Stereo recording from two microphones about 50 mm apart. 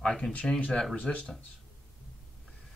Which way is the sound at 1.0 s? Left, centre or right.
Left.